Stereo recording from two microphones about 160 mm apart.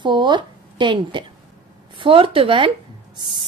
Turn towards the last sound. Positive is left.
turn(degrees=-30)  # may be behind; listen again after turning